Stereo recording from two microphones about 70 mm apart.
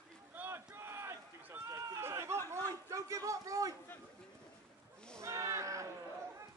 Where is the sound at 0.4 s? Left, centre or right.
Right.